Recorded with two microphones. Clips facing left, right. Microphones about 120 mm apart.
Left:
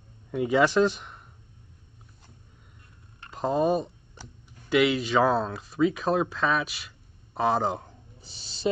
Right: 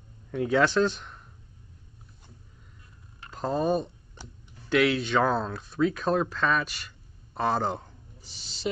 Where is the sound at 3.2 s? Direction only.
5° left (ahead or behind).